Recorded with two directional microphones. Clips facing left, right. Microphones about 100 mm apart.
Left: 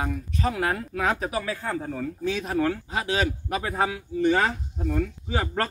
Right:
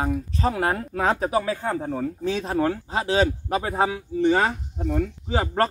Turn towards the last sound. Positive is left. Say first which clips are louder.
# right 4 dB
turn(degrees=-30)  # may be behind; listen again after turning